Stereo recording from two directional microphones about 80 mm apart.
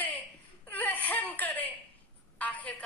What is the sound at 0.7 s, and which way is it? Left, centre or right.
Whimper, left.